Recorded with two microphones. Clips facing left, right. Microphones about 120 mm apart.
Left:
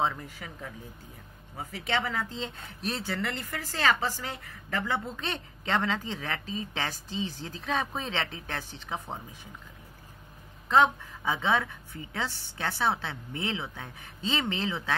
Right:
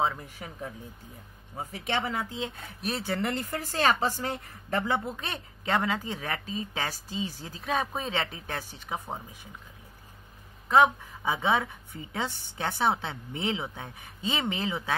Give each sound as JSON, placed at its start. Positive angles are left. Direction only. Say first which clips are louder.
{"t": 0.4, "sound": "speech", "louder": "right 2 dB", "side_deg": -30}
{"t": 1.6, "sound": "speech", "louder": "even", "side_deg": -20}
{"t": 10.7, "sound": "speech", "louder": "right 1 dB", "side_deg": -15}